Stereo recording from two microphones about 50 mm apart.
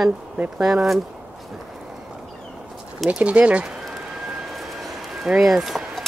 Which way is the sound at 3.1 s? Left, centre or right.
Right.